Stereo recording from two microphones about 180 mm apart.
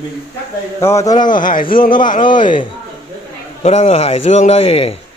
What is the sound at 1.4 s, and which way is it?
Speech, 50° left (ahead or behind).